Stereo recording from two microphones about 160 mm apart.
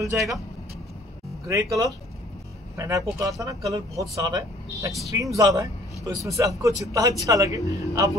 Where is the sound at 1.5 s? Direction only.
20° right (ahead or behind).